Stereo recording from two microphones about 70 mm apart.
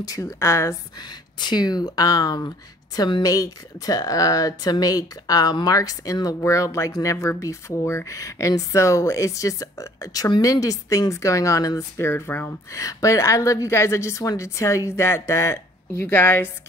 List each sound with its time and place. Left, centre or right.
0.0 s speech: left
0.9 s speech: left
12.0 s speech: left
12.7 s speech: left